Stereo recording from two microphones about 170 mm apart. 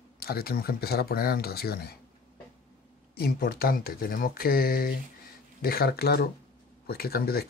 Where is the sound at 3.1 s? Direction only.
65° left (ahead or behind).